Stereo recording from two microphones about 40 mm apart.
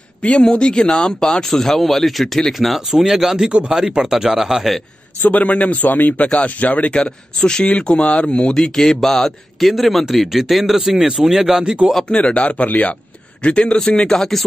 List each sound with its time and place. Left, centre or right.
0.2 s speech: left; by 3.4 s centre
3.4 s speech: right
5.2 s a man's voice: left
6.2 s speech: left
6.9 s speech: centre
7.6 s speech: left
8.7 s a man's voice: centre
12.1 s speech: left
12.6 s speech: left
13.4 s speech: left